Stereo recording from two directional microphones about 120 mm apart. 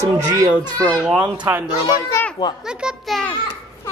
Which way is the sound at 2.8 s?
Centre (ahead or behind).